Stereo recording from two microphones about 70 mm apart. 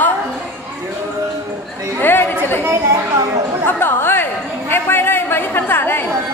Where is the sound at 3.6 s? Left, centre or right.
Left.